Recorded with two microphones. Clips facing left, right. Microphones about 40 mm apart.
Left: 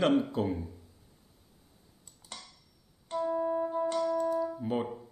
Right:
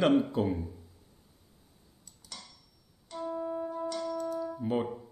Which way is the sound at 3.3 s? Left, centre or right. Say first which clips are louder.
Left 4 dB; centre.